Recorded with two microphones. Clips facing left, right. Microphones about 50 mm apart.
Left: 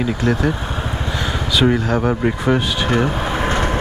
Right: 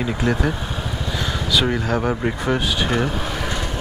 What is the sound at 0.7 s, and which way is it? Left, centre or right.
Vehicle, left.